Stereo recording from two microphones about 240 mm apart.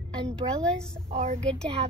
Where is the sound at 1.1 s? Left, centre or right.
Right.